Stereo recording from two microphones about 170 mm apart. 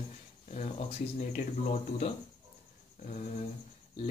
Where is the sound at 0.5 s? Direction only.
35° left (ahead or behind).